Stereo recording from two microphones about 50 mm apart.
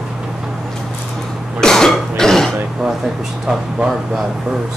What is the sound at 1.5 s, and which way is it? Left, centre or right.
Cough, centre.